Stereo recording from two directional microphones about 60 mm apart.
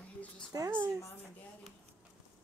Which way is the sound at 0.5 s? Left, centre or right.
Right.